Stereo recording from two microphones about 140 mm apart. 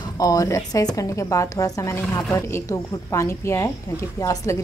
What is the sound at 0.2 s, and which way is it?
A woman's voice, 25° left (ahead or behind).